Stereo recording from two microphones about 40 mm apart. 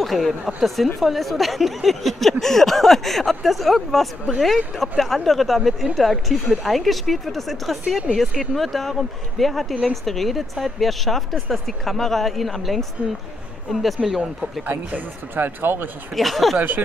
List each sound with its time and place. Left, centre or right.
0.0 s speech: centre
15.3 s speech: right
16.2 s speech: centre
16.5 s speech: right